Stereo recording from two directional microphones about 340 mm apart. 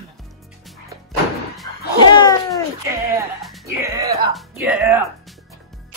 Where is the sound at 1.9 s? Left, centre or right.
Centre.